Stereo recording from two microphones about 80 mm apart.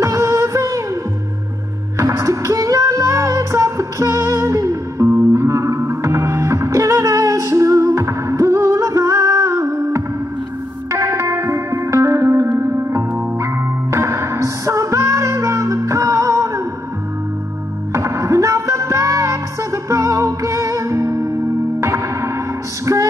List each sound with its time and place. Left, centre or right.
0.0 s a sound: right
2.0 s music: right
17.9 s music: right